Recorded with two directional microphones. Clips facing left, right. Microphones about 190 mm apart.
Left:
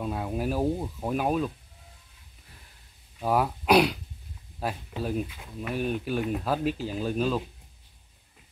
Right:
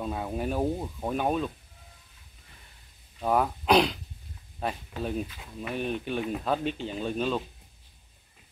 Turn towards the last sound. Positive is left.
turn(degrees=5)  # may be behind; listen again after turning